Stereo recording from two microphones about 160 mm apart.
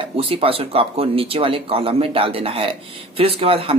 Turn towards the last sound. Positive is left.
turn(degrees=-35)  # may be behind; listen again after turning